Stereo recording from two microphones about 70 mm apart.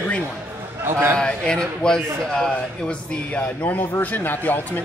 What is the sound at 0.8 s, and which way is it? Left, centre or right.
Speech, right.